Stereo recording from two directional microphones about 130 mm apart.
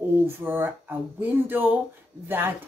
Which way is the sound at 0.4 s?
15° right (ahead or behind).